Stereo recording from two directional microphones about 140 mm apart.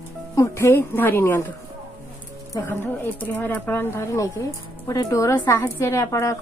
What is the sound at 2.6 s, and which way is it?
Speech, 15° left (ahead or behind).